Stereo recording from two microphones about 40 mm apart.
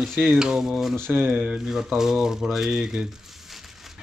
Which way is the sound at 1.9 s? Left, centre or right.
Centre.